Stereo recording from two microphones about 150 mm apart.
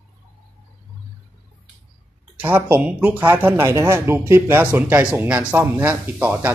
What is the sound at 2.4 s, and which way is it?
Speech, 15° right (ahead or behind).